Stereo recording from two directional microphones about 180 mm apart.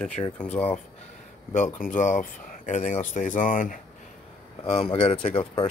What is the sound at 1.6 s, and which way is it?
Speech, 45° left (ahead or behind).